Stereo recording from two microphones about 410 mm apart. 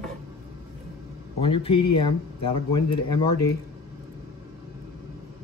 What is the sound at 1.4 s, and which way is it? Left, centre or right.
Speech, centre.